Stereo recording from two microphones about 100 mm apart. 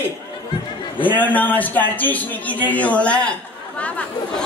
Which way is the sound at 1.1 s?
15° left (ahead or behind).